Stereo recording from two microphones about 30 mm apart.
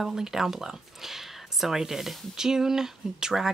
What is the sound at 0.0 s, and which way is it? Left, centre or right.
Speech, centre.